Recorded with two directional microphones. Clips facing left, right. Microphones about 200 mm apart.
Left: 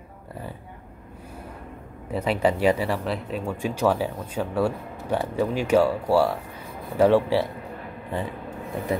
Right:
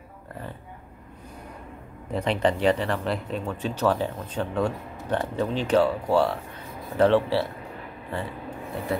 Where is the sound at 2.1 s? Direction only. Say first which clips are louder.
Left 1 dB; 5° left (ahead or behind).